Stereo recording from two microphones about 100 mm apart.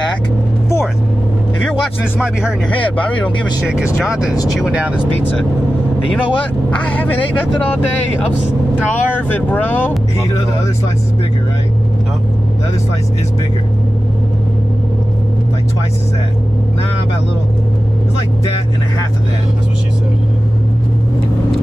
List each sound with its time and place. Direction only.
2.1 s speech: 10° right (ahead or behind)
2.8 s speech: 15° left (ahead or behind)
3.6 s speech: 5° right (ahead or behind)
6.7 s speech: 15° left (ahead or behind)
8.9 s speech: 20° left (ahead or behind)